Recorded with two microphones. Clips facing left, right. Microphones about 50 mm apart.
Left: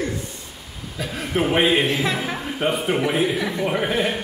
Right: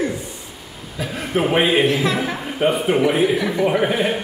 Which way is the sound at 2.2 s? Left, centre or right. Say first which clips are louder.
Right 4 dB; centre.